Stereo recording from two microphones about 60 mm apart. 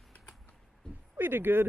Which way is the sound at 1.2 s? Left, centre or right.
Right.